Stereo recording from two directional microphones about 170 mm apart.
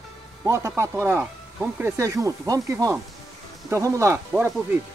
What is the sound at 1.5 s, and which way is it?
Speech, 5° right (ahead or behind).